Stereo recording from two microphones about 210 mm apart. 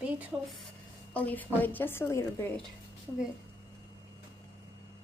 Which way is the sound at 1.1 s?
5° left (ahead or behind).